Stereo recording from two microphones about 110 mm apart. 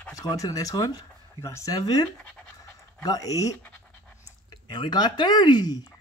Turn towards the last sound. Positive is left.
turn(degrees=40)  # may be behind; listen again after turning